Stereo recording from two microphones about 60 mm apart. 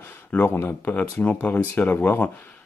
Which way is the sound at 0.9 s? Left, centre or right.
Left.